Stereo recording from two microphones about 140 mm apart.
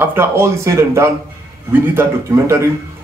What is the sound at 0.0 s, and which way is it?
A man's voice, 15° right (ahead or behind).